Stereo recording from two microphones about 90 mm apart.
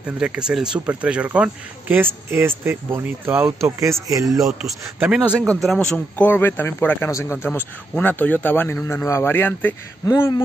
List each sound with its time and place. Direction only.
0.0 s speech: 10° right (ahead or behind)
2.0 s speech: 25° right (ahead or behind)
4.9 s speech: 15° right (ahead or behind)
5.6 s a man's voice: 5° left (ahead or behind)
6.2 s a man's voice: 20° left (ahead or behind)
7.1 s speech: 35° left (ahead or behind)
7.4 s a man's voice: 20° left (ahead or behind)